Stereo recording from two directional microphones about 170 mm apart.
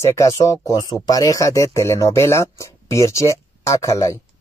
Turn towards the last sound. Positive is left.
turn(degrees=20)  # may be behind; listen again after turning